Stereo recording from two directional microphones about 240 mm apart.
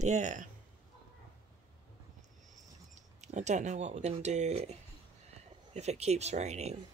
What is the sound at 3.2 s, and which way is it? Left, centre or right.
Speech, right.